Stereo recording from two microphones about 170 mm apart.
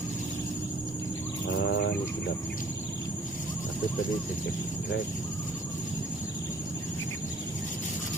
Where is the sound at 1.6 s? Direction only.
90° left.